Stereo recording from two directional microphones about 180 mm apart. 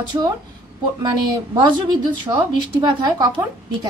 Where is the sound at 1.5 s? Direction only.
25° right (ahead or behind).